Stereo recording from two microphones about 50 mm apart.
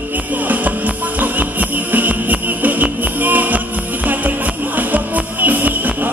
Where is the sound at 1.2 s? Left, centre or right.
Right.